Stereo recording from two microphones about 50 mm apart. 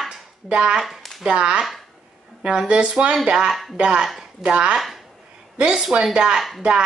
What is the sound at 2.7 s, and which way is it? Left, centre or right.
A woman's voice, right.